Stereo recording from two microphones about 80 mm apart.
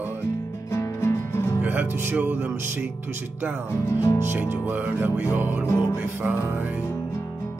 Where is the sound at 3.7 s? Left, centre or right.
Left.